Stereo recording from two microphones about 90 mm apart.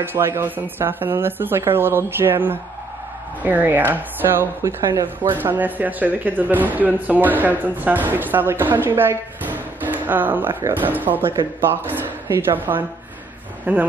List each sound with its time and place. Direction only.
0.0 s speech: 25° right (ahead or behind)